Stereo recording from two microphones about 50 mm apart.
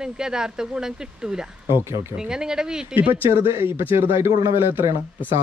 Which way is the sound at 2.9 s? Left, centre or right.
Right.